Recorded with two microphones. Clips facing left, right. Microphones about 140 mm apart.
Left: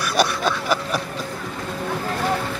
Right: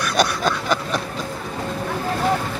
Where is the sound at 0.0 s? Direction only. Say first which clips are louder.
Right 1 dB; 5° left (ahead or behind).